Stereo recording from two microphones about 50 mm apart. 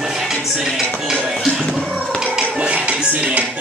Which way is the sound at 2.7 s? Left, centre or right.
Right.